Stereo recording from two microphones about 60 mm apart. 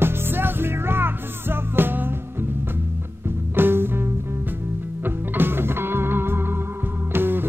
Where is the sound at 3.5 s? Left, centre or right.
Right.